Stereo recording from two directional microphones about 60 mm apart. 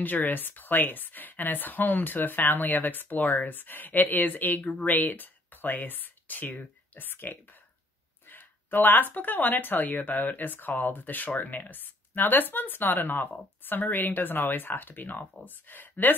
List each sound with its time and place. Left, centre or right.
0.0 s speech: left